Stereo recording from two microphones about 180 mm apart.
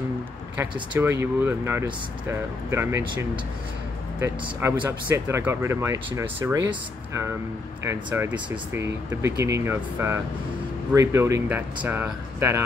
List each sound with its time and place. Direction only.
0.9 s speech: 15° right (ahead or behind)